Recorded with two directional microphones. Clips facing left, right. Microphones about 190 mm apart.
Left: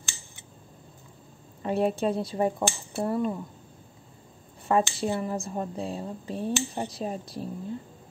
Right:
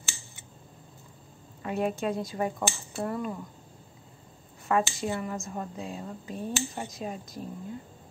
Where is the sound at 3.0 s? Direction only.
25° left (ahead or behind).